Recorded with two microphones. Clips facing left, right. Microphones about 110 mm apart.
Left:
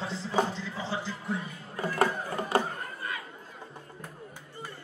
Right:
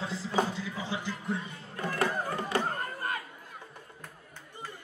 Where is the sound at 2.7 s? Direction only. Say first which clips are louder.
Right 3 dB; 55° right (ahead or behind).